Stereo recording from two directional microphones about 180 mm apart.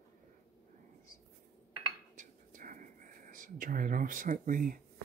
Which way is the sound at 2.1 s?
45° right (ahead or behind).